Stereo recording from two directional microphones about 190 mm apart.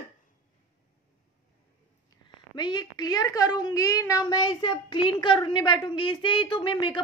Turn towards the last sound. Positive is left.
turn(degrees=25)  # may be behind; listen again after turning